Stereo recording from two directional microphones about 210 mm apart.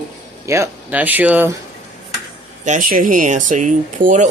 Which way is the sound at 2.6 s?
40° right (ahead or behind).